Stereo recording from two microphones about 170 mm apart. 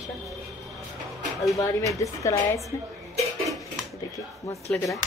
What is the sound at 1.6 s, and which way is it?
A woman's voice, 20° left (ahead or behind).